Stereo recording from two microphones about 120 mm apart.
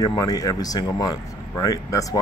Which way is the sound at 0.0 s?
30° left (ahead or behind).